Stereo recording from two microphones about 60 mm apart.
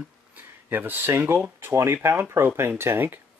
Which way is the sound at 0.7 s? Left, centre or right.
Right.